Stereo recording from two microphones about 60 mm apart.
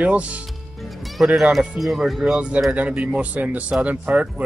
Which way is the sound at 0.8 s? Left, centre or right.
Centre.